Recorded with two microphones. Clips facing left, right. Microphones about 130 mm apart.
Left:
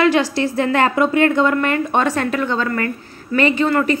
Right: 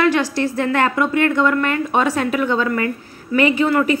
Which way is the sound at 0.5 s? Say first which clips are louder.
Left 2 dB; 30° left (ahead or behind).